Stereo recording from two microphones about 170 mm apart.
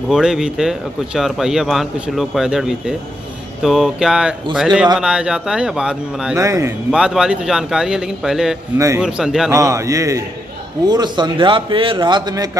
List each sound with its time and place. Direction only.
0.1 s speech: 5° right (ahead or behind)
6.3 s a man's voice: 15° right (ahead or behind)
6.9 s speech: 5° right (ahead or behind)
8.7 s a man's voice: 15° right (ahead or behind)
9.0 s speech: 5° right (ahead or behind)
9.5 s a man's voice: 15° right (ahead or behind)